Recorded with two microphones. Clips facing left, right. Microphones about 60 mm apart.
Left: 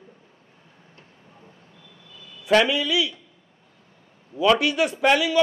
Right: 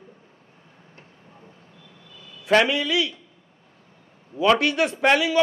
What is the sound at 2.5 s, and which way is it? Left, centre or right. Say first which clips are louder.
Speech: even; right.